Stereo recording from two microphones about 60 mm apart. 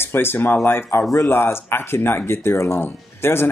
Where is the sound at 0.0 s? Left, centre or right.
Left.